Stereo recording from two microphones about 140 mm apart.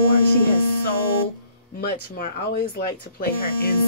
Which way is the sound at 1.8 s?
90° left.